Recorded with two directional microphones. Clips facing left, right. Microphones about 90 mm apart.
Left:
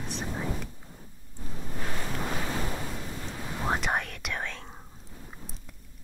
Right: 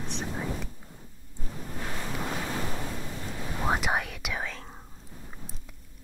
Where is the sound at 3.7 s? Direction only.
5° right (ahead or behind).